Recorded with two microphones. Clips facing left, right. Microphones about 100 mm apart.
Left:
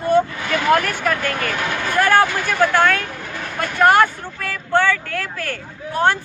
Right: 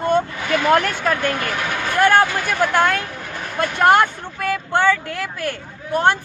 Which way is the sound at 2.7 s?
20° right (ahead or behind).